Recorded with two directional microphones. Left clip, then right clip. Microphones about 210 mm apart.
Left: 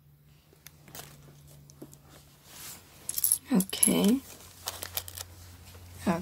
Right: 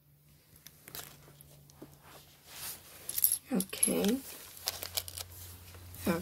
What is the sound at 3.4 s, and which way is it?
Keys jangling, 45° left (ahead or behind).